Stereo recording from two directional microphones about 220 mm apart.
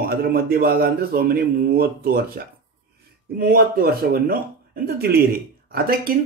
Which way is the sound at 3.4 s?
40° right (ahead or behind).